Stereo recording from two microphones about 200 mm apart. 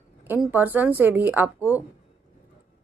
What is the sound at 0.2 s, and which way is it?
A woman's voice, 10° right (ahead or behind).